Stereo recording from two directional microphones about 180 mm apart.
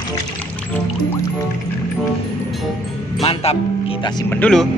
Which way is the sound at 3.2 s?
30° left (ahead or behind).